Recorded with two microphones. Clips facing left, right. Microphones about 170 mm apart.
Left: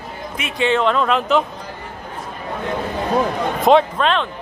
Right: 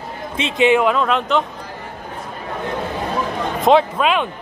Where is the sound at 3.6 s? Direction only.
5° right (ahead or behind).